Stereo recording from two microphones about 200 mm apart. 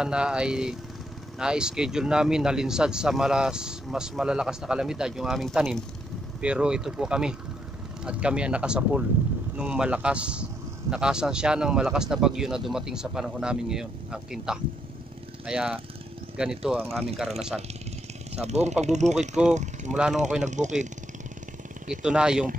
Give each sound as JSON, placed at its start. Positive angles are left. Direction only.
{"t": 0.0, "sound": "a man's voice", "side_deg": -5}
{"t": 18.3, "sound": "speech", "side_deg": -35}
{"t": 22.0, "sound": "a man's voice", "side_deg": -5}